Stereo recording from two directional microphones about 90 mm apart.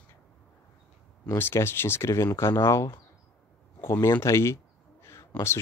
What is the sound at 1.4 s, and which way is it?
Speech, 25° left (ahead or behind).